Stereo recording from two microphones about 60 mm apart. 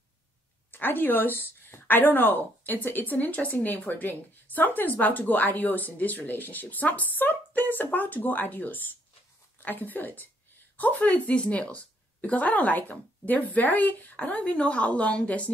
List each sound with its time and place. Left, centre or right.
0.7 s a woman's voice: left